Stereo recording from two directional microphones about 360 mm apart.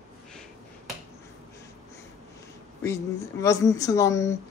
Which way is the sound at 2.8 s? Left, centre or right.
Centre.